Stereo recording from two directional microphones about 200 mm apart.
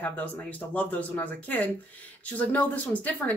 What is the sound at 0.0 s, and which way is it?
Speech, 5° left (ahead or behind).